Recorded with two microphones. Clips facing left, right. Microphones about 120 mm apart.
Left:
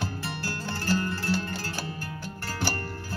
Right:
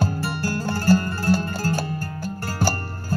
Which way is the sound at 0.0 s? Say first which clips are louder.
Right 8 dB; 45° right (ahead or behind).